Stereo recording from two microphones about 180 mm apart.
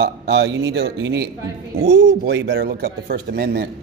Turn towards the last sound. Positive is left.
turn(degrees=-60)  # may be behind; listen again after turning